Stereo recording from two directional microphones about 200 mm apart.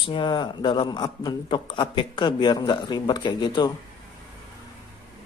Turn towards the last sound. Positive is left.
turn(degrees=20)  # may be behind; listen again after turning